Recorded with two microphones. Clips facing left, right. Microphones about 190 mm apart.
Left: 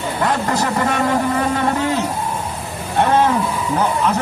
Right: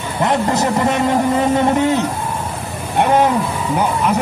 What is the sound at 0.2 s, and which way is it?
Speech, 20° right (ahead or behind).